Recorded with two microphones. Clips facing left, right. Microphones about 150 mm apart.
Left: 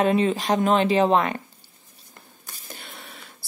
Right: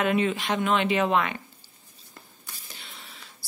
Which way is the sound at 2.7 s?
50° left (ahead or behind).